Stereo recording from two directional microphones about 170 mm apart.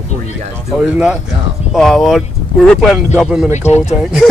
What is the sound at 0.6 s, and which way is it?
A man's voice, 5° right (ahead or behind).